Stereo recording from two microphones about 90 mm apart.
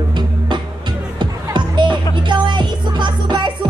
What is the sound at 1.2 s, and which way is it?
Music, 60° right (ahead or behind).